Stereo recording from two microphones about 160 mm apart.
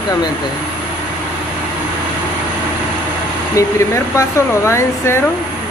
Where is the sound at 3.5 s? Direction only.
20° left (ahead or behind).